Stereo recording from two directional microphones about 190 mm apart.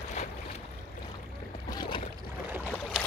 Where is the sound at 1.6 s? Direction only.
25° left (ahead or behind).